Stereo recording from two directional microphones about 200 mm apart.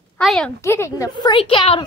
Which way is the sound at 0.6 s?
15° left (ahead or behind).